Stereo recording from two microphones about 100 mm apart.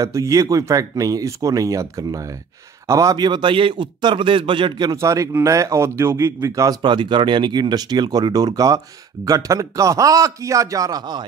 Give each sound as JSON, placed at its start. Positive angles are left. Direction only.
{"t": 0.0, "sound": "speech", "side_deg": -30}
{"t": 3.2, "sound": "a man's voice", "side_deg": -50}
{"t": 4.9, "sound": "speech", "side_deg": -30}
{"t": 6.8, "sound": "speech", "side_deg": -50}